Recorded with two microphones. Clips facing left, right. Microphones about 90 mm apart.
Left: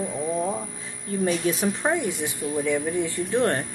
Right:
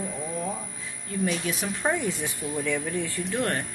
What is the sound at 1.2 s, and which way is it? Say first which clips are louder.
Speech: left 5 dB; 30° left (ahead or behind).